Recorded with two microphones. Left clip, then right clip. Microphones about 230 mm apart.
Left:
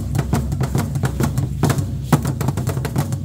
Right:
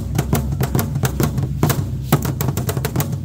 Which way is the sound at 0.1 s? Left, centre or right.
Right.